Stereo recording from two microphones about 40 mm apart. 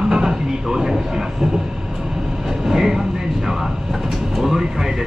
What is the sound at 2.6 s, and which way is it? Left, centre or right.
Vehicle, centre.